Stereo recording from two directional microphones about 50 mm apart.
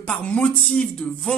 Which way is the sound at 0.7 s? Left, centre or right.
Centre.